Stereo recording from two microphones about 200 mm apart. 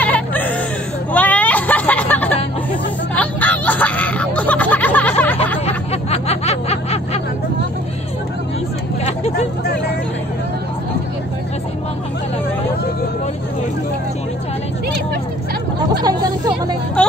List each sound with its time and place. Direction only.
0.0 s music: 10° left (ahead or behind)
1.1 s hubbub: 10° left (ahead or behind)
3.2 s a sound: 10° left (ahead or behind)
6.0 s snicker: 30° left (ahead or behind)
16.0 s hubbub: 20° right (ahead or behind)